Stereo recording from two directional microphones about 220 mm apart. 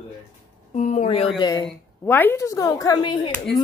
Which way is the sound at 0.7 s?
30° left (ahead or behind).